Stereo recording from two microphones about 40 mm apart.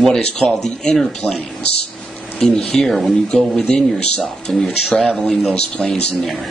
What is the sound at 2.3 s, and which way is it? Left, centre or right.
A man's voice, centre.